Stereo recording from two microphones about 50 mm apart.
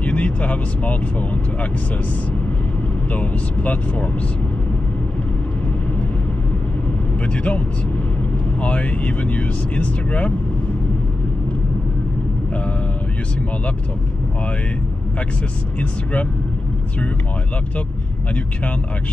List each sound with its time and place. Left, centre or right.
0.0 s vehicle: left
3.1 s speech: left
7.2 s speech: left
15.8 s speech: left